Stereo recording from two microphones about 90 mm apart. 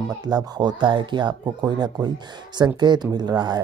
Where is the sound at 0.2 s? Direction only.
50° right (ahead or behind).